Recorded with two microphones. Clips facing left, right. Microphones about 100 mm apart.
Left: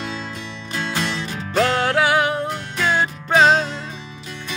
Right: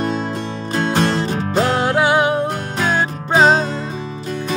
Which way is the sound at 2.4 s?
45° right (ahead or behind).